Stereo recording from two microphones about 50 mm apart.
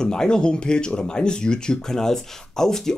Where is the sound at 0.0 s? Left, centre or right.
Centre.